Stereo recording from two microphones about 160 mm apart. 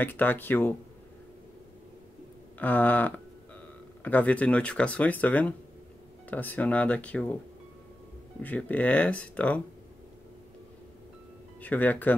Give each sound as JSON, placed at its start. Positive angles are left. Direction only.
{"t": 0.0, "sound": "speech", "side_deg": 10}
{"t": 2.6, "sound": "speech", "side_deg": 10}
{"t": 8.4, "sound": "speech", "side_deg": 10}
{"t": 11.6, "sound": "speech", "side_deg": 10}